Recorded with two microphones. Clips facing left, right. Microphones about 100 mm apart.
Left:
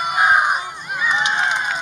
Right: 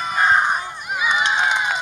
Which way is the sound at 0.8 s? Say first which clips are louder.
Even; 10° right (ahead or behind).